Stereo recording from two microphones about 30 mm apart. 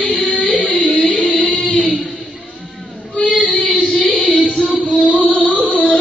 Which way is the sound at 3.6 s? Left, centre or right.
Left.